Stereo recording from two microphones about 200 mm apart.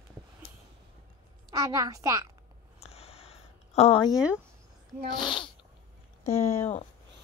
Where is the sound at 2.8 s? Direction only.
30° left (ahead or behind).